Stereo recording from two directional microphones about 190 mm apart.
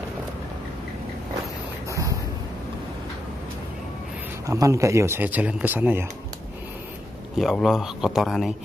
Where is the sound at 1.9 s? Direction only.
15° right (ahead or behind).